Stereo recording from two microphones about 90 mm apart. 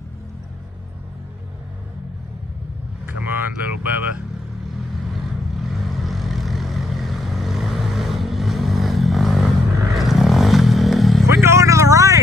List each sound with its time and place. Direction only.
3.3 s speech: 20° right (ahead or behind)
5.1 s vehicle: centre (ahead or behind)
9.9 s wild animals: centre (ahead or behind)
11.2 s a sound: 30° right (ahead or behind)